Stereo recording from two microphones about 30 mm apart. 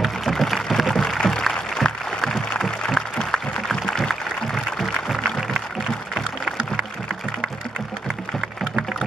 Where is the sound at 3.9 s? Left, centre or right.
Centre.